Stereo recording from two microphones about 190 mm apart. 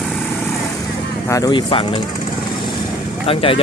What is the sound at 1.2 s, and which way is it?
Speech, 20° left (ahead or behind).